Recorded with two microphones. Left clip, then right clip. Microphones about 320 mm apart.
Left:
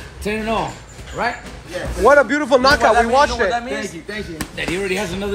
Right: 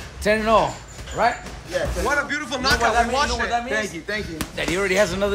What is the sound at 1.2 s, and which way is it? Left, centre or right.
Speech, right.